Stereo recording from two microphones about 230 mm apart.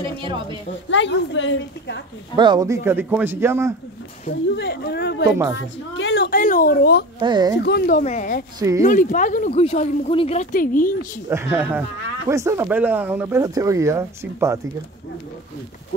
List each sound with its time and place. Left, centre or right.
0.2 s speech: right
0.8 s speech: left
2.3 s speech: centre
4.6 s speech: left
7.2 s speech: centre
7.5 s speech: left
8.5 s speech: centre
8.8 s speech: left
11.2 s speech: centre